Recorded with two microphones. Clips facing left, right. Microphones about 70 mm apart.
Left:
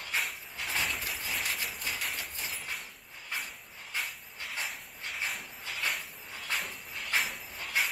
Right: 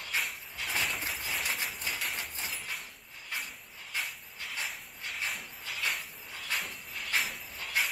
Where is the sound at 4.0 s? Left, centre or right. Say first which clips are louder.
Even; centre.